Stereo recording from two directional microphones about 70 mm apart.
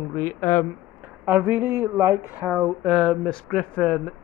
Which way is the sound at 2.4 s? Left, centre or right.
Centre.